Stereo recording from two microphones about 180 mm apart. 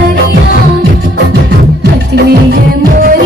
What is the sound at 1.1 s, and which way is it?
Music, 70° right (ahead or behind).